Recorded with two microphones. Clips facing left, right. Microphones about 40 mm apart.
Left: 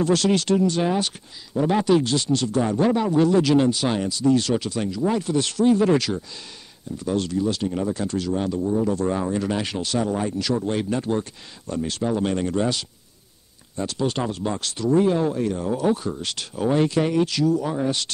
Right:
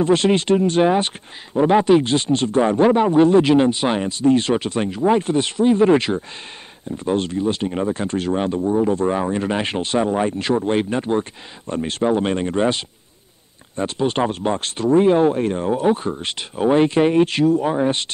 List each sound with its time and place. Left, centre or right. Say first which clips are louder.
0.0 s speech: right 4 dB; right